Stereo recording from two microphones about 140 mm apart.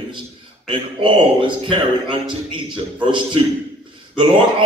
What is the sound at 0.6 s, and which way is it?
A man's voice, 35° right (ahead or behind).